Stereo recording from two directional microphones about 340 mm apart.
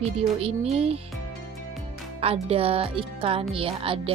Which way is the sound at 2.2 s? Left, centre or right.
Centre.